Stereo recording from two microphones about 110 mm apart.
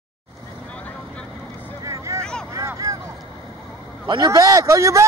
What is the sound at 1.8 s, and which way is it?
Vehicle, 30° right (ahead or behind).